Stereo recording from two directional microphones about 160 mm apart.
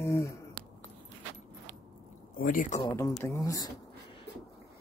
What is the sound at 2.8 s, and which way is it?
Speech, 20° left (ahead or behind).